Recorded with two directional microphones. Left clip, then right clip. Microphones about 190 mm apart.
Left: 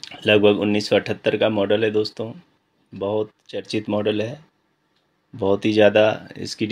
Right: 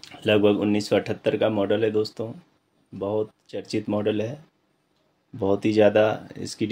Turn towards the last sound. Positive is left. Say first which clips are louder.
# left 3 dB
turn(degrees=10)  # may be behind; listen again after turning